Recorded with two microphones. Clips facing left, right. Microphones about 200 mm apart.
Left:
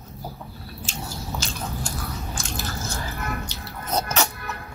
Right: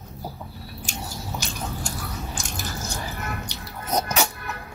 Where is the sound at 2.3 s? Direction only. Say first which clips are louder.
Left 1 dB; 15° right (ahead or behind).